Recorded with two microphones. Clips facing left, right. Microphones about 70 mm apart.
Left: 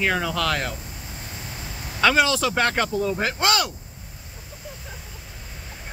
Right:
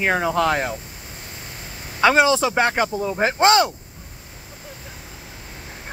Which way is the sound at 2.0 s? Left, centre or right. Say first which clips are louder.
Right 4 dB; right.